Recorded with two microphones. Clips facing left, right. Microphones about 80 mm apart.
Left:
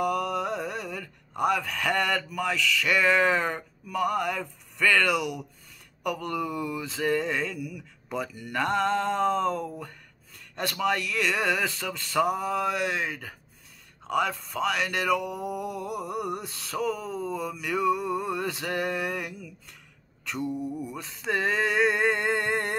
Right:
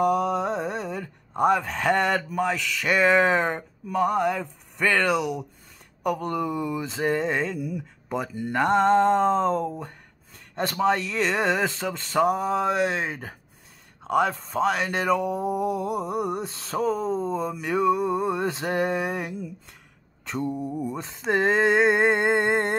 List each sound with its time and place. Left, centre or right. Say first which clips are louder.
0.0 s speech: right 5 dB; right
6.0 s mantra: right 4 dB; right
14.0 s a sound: right 4 dB; right
20.2 s mantra: right 2 dB; right